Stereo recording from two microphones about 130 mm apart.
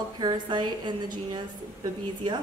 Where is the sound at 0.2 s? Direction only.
35° right (ahead or behind).